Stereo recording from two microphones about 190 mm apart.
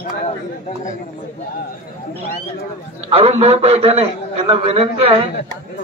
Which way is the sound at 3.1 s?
30° right (ahead or behind).